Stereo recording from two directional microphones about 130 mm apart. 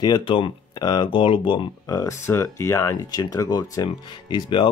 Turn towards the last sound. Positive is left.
turn(degrees=35)  # may be behind; listen again after turning